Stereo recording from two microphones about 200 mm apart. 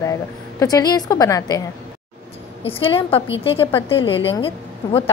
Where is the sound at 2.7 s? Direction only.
25° left (ahead or behind).